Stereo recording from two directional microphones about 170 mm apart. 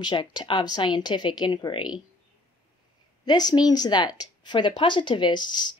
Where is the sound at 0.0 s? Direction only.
25° left (ahead or behind).